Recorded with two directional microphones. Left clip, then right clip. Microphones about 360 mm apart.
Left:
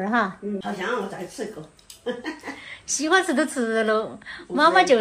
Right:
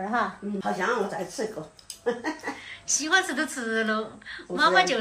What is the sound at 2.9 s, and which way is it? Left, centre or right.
A woman's voice, centre.